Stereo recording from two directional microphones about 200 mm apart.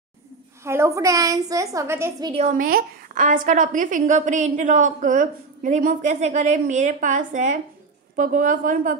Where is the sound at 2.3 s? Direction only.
40° right (ahead or behind).